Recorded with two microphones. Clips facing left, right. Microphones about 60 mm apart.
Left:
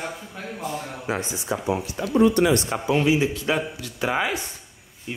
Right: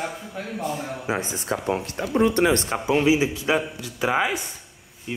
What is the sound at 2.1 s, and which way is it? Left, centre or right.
Speech, right.